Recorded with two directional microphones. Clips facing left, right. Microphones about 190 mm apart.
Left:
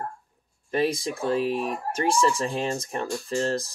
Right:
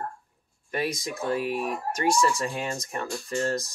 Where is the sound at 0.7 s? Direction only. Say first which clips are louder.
Left 5 dB; 30° left (ahead or behind).